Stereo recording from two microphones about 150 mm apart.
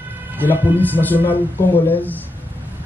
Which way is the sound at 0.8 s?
10° left (ahead or behind).